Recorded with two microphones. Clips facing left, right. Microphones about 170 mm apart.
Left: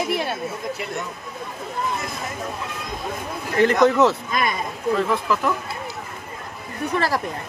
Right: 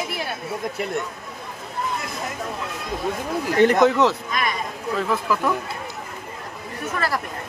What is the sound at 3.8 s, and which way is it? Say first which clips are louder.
Speech: left 1 dB; centre (ahead or behind).